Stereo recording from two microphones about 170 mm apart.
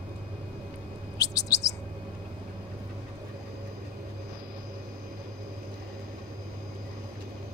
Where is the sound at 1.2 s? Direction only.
20° left (ahead or behind).